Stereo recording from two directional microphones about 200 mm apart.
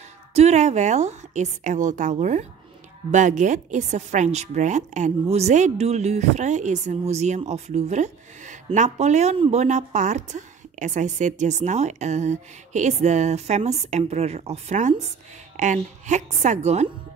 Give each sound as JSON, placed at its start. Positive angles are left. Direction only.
{"t": 0.3, "sound": "a woman's voice", "side_deg": -35}